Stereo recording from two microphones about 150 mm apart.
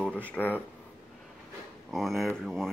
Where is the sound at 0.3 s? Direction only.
10° left (ahead or behind).